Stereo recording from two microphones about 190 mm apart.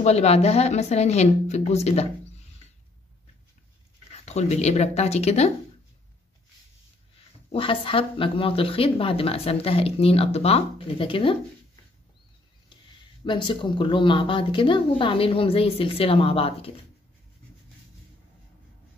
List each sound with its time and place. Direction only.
0.0 s speech: 35° left (ahead or behind)
4.3 s speech: 35° left (ahead or behind)
7.5 s speech: 30° left (ahead or behind)
13.2 s speech: 25° left (ahead or behind)